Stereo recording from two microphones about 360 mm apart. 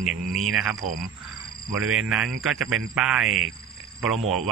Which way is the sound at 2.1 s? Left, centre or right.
Centre.